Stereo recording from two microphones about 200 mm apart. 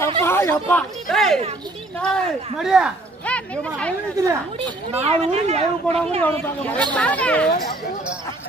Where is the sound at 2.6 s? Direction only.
Centre (ahead or behind).